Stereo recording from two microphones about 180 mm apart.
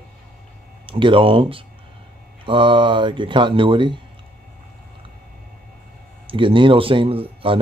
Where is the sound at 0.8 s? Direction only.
30° right (ahead or behind).